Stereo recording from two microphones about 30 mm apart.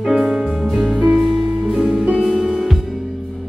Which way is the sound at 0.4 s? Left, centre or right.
Right.